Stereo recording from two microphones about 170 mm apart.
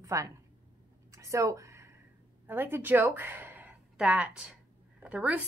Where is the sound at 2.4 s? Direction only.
10° right (ahead or behind).